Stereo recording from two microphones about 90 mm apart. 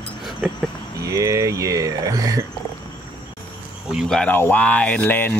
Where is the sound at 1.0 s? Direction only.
35° right (ahead or behind).